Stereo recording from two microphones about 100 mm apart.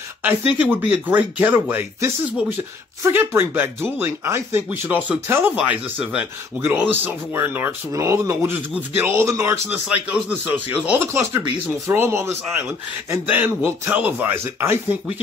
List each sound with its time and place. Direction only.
0.2 s speech: 15° right (ahead or behind)
9.8 s speech: 10° right (ahead or behind)
11.1 s speech: 30° right (ahead or behind)